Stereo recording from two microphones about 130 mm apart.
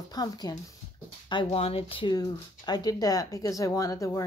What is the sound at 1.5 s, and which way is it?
Speech, 50° left (ahead or behind).